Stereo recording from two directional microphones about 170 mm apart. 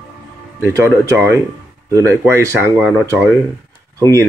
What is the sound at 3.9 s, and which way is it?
Speech, 20° right (ahead or behind).